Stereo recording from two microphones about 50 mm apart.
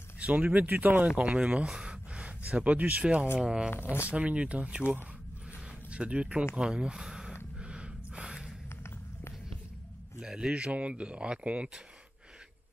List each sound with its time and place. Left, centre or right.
0.2 s speech: right
1.0 s speech: right
1.7 s a sound: centre
3.3 s speech: centre
3.7 s speech: left
4.1 s speech: right
7.5 s gasp: right
10.2 s speech: centre